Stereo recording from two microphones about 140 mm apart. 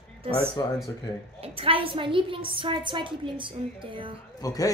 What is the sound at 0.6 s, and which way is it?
Speech, 25° left (ahead or behind).